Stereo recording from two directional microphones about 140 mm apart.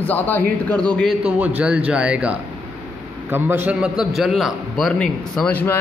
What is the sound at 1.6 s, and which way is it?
A man's voice, 10° right (ahead or behind).